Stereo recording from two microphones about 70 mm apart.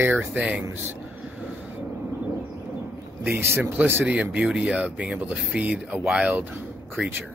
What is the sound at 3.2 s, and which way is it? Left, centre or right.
Speech, right.